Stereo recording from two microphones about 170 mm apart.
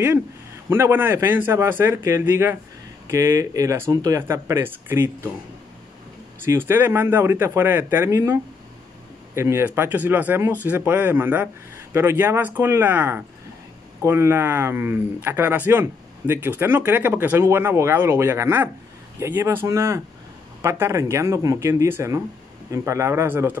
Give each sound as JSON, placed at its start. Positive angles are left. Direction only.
{"t": 0.7, "sound": "speech", "side_deg": -15}
{"t": 6.4, "sound": "speech", "side_deg": -15}